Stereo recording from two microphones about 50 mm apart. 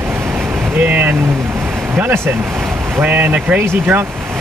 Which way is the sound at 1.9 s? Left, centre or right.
Right.